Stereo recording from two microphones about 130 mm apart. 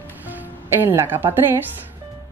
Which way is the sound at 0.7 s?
15° right (ahead or behind).